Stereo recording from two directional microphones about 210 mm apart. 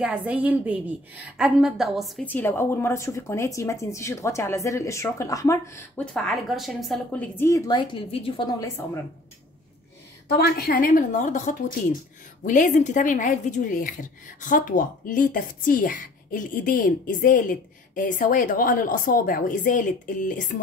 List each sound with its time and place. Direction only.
0.0 s a woman's voice: 5° right (ahead or behind); by 8.6 s 25° left (ahead or behind)
10.2 s a woman's voice: 50° left (ahead or behind)